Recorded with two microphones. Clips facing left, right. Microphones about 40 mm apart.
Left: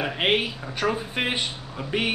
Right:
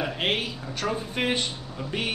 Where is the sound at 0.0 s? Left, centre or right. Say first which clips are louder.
Left 4 dB; left.